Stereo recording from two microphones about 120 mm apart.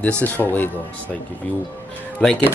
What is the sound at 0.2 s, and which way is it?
Speech, 15° left (ahead or behind).